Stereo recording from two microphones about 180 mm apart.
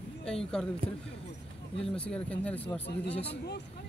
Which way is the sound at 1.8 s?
5° left (ahead or behind).